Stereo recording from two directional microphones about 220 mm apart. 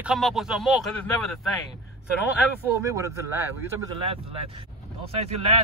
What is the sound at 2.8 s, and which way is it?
Speech, 15° right (ahead or behind).